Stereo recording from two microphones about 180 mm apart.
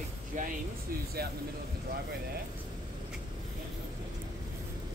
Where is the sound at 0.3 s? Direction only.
45° right (ahead or behind).